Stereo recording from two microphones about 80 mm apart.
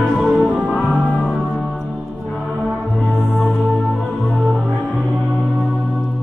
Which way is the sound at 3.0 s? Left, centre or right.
Centre.